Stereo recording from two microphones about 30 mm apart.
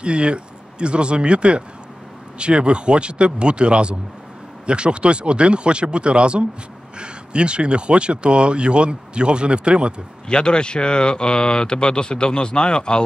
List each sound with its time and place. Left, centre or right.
0.0 s speech: right
10.2 s speech: left